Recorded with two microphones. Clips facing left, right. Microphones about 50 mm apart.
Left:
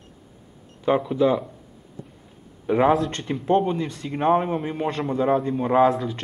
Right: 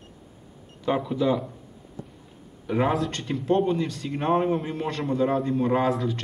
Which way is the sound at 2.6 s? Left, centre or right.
Centre.